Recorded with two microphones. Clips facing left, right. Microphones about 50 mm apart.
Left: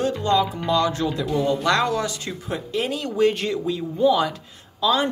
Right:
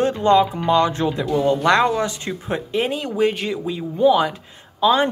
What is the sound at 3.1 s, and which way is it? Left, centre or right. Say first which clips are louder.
Speech: even; centre.